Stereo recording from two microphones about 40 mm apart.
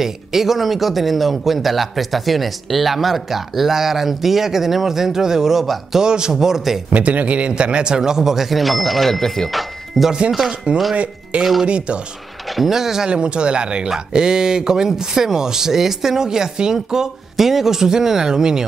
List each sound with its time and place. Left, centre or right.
0.0 s speech: centre
5.9 s speech: centre
6.3 s speech: centre
6.9 s speech: right; by 10.1 s centre
10.5 s speech: right
12.4 s speech: centre
13.1 s speech: right